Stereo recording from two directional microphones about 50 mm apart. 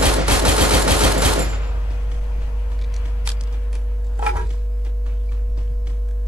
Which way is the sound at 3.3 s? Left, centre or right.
Right.